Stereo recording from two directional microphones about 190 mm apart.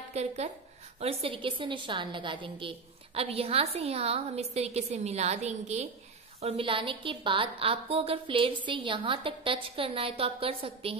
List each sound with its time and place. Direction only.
0.1 s a woman's voice: 35° right (ahead or behind)